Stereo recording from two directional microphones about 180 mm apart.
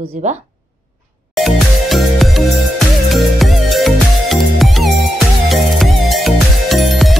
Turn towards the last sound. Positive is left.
turn(degrees=0)  # may be behind; listen again after turning